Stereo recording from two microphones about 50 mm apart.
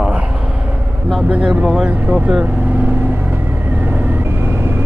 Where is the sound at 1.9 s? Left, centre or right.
Right.